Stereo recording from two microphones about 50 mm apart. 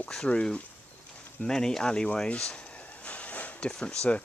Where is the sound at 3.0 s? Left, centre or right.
Left.